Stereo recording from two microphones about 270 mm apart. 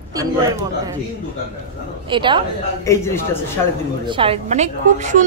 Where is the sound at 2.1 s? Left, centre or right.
Centre.